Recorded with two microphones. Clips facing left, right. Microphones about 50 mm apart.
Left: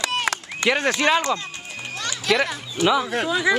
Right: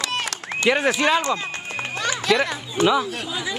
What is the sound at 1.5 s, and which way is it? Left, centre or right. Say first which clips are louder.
Children playing: right 6 dB; right.